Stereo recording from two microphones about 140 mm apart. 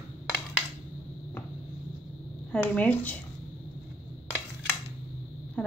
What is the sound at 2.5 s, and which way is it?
Speech, 10° left (ahead or behind).